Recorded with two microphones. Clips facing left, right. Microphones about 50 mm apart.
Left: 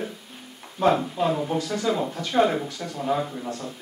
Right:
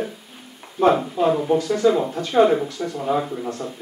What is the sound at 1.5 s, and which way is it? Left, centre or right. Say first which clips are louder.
Speech: right 5 dB; right.